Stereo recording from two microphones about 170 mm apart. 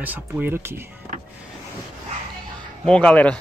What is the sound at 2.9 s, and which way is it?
Speech, 5° left (ahead or behind).